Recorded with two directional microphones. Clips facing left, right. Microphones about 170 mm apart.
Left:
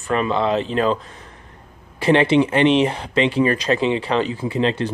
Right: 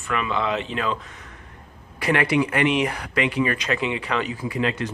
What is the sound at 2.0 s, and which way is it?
Speech, 25° left (ahead or behind).